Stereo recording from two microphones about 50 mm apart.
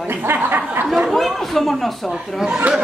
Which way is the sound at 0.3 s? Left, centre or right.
Right.